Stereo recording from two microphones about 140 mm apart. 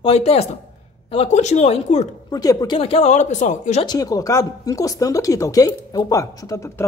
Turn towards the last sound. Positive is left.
turn(degrees=20)  # may be behind; listen again after turning